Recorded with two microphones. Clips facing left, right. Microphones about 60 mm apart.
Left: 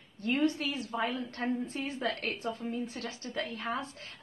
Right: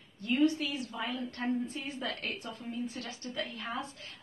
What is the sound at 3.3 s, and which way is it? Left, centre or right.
Speech, left.